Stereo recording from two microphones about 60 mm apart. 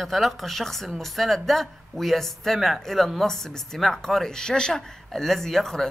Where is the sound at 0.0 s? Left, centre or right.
Centre.